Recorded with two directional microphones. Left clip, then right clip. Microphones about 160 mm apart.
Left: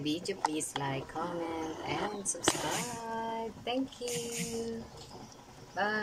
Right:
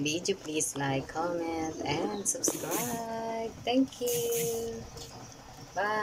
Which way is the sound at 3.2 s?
5° right (ahead or behind).